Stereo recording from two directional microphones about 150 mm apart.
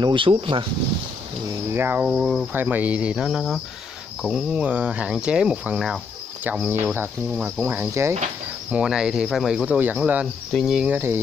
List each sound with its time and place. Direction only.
0.0 s speech: 35° right (ahead or behind)
1.7 s speech: 15° right (ahead or behind)
8.7 s speech: 5° right (ahead or behind)